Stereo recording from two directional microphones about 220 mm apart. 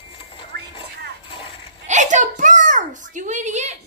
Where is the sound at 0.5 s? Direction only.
50° right (ahead or behind).